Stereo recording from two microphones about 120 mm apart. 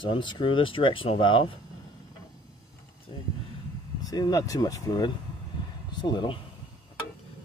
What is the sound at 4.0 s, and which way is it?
Speech, 30° left (ahead or behind).